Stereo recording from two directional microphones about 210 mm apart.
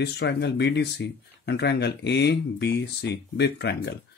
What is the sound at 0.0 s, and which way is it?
Speech, 50° left (ahead or behind).